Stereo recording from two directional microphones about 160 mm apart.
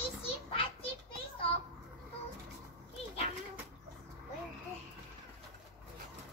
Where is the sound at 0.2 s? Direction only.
35° left (ahead or behind).